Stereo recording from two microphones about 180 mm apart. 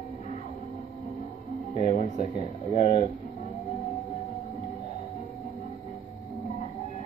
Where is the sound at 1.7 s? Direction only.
40° left (ahead or behind).